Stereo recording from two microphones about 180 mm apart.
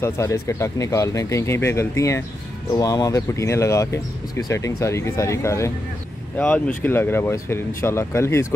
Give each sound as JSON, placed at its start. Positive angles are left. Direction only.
{"t": 0.0, "sound": "speech", "side_deg": 15}